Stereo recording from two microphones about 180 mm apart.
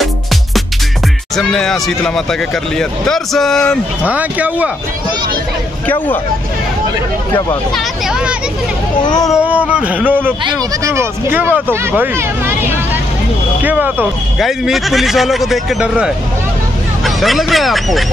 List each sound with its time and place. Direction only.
1.3 s speech: 5° left (ahead or behind)
4.0 s speech: 10° right (ahead or behind)
7.7 s speech: 5° right (ahead or behind)
9.0 s speech: 20° left (ahead or behind)
9.3 s speech: 10° right (ahead or behind)
13.6 s speech: 10° right (ahead or behind)